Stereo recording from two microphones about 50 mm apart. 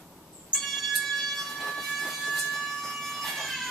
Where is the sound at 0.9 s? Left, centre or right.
Centre.